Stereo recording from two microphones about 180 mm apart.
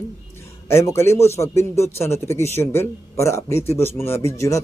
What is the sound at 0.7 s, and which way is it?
Speech, 15° left (ahead or behind).